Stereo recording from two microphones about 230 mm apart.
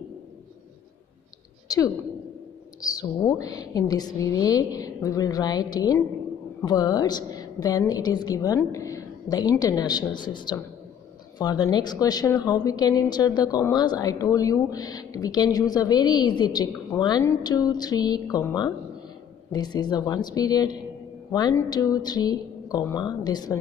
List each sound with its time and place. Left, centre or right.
2.8 s a woman's voice: centre